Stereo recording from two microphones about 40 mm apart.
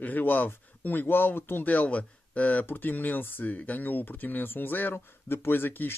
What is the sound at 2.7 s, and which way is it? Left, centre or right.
Speech, left.